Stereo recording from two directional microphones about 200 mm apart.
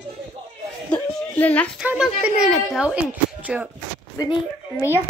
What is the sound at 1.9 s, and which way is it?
Speech, 5° right (ahead or behind).